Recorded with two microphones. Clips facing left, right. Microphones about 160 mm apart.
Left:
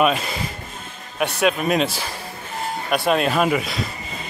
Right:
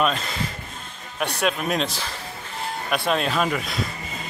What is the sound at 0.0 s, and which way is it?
A man's voice, 10° left (ahead or behind).